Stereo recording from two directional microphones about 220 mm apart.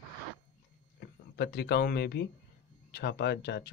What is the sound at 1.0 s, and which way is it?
Speech, 50° left (ahead or behind).